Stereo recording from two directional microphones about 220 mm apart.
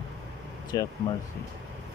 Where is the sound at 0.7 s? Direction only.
15° left (ahead or behind).